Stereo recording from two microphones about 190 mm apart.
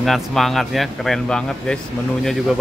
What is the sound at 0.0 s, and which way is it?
Speech, centre (ahead or behind).